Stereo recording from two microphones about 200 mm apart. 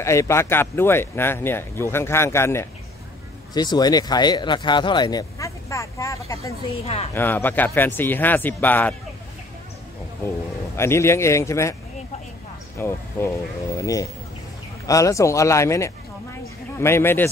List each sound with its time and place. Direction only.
0.0 s speech: 15° left (ahead or behind)
10.8 s speech: 15° left (ahead or behind)
12.7 s speech: 10° left (ahead or behind)